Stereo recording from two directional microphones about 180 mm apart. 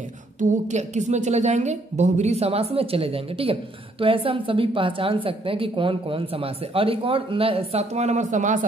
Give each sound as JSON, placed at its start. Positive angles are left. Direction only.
{"t": 0.4, "sound": "a woman's voice", "side_deg": -45}